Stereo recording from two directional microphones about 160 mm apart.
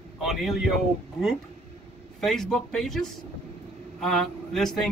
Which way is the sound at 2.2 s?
5° left (ahead or behind).